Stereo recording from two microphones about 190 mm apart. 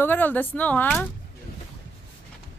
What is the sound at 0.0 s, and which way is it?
Speech, 10° left (ahead or behind).